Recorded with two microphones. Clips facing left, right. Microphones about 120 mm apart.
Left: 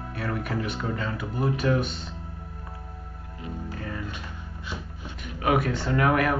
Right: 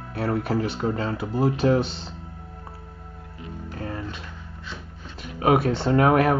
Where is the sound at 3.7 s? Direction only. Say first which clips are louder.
Right 7 dB; 30° right (ahead or behind).